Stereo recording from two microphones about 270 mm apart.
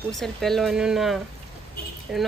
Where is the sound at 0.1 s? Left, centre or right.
Centre.